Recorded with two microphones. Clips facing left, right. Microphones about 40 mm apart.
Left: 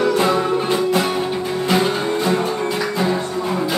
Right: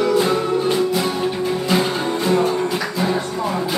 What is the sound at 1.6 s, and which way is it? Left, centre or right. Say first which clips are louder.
Music: left 3 dB; centre.